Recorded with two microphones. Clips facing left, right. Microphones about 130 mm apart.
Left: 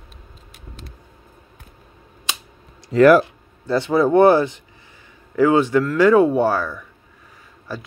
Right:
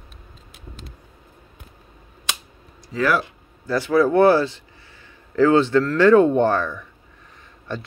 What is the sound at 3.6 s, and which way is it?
Speech, 25° left (ahead or behind).